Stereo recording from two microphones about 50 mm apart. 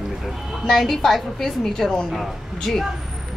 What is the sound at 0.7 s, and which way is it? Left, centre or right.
A woman's voice, centre.